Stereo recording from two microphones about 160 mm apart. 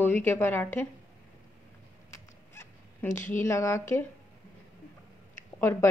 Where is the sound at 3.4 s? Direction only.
15° left (ahead or behind).